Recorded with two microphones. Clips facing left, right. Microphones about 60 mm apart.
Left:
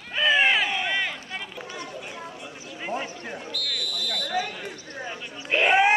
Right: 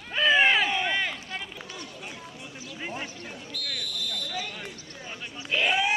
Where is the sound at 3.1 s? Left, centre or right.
Left.